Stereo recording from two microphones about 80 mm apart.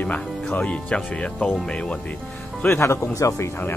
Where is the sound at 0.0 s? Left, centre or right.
Centre.